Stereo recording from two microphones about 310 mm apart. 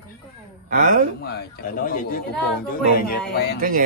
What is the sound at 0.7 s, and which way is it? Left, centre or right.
Speech, right.